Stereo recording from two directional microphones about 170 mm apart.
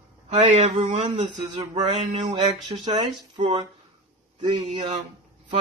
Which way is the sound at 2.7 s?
25° right (ahead or behind).